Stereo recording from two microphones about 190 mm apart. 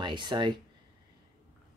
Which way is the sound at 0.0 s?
25° right (ahead or behind).